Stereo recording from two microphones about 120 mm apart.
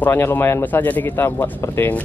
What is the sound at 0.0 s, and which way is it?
Speech, 15° left (ahead or behind).